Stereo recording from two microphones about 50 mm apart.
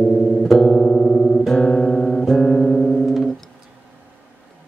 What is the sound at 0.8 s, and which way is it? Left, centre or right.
Music, centre.